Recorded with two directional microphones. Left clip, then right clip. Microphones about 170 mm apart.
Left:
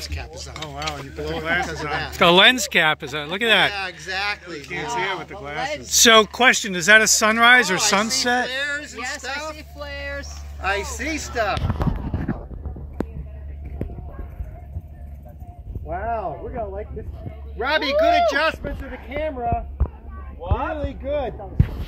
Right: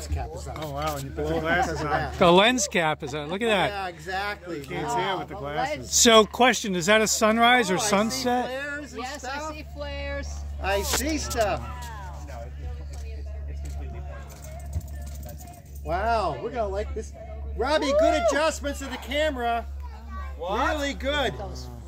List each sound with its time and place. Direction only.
0.1 s speech: 70° right (ahead or behind); by 1.7 s 85° right
1.8 s speech: 70° right (ahead or behind)
2.1 s speech: 5° right (ahead or behind)
3.7 s speech: 70° right (ahead or behind); by 5.3 s 90° right
5.9 s speech: 10° right (ahead or behind)
8.5 s a sound: 55° right (ahead or behind)
9.2 s speech: 45° right (ahead or behind)
9.6 s a sound: 25° left (ahead or behind)
10.6 s speech: 30° right (ahead or behind)
15.9 s speech: 25° right (ahead or behind); by 19.6 s 45° right (ahead or behind)
20.3 s speech: 30° right (ahead or behind)